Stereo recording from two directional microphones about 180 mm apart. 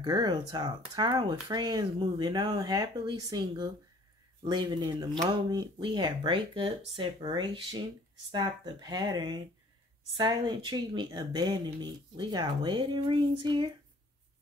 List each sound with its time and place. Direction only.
0.0 s speech: 25° right (ahead or behind)